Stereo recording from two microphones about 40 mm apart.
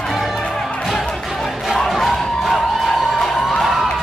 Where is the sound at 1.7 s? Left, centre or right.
Centre.